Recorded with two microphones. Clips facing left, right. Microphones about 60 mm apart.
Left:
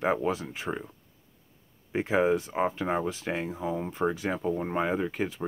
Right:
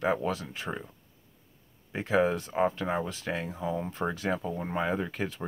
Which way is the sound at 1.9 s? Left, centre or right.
Centre.